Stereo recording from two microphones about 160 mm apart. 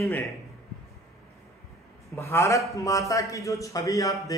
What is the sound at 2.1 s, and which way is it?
A man's voice, 15° left (ahead or behind).